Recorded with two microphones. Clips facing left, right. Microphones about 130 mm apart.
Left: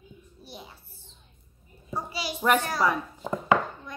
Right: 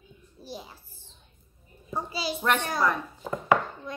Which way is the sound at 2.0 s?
30° right (ahead or behind).